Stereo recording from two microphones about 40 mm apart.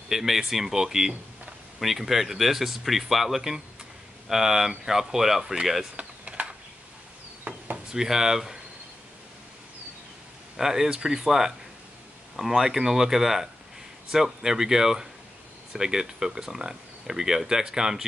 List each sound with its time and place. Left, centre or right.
0.1 s speech: centre
5.4 s speech: centre
5.9 s a sound: right
7.9 s speech: centre
10.6 s speech: centre